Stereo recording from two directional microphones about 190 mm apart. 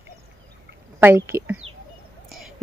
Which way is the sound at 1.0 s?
15° right (ahead or behind).